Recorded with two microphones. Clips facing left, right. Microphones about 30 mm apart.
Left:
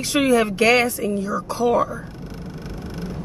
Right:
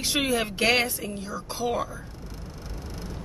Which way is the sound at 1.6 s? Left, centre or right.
Centre.